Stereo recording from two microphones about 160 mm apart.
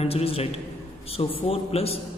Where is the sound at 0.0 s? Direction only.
35° left (ahead or behind).